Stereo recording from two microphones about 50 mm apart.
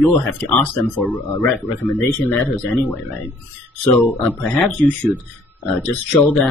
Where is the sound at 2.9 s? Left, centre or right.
Left.